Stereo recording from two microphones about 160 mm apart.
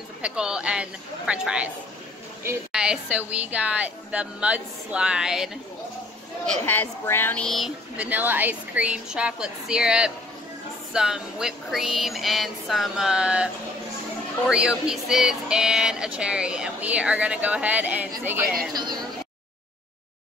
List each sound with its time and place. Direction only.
0.2 s a woman's voice: 5° right (ahead or behind)
2.7 s a woman's voice: 5° right (ahead or behind)
6.4 s a woman's voice: 10° left (ahead or behind); by 13.5 s 5° right (ahead or behind)
14.5 s a woman's voice: 5° right (ahead or behind)
18.7 s speech: 25° right (ahead or behind)